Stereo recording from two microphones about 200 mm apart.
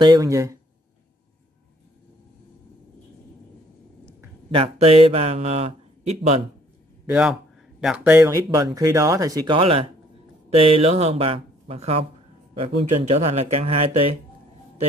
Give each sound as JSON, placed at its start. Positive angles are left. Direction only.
{"t": 0.0, "sound": "speech", "side_deg": -20}
{"t": 4.5, "sound": "speech", "side_deg": -30}
{"t": 7.1, "sound": "a man's voice", "side_deg": -5}